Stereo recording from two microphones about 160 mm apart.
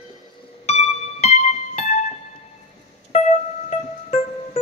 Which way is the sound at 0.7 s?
45° left (ahead or behind).